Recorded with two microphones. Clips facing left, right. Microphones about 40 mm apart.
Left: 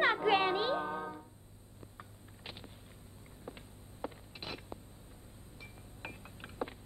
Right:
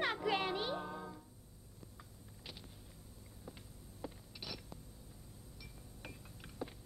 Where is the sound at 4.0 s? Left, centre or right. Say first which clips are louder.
Left 5 dB; left.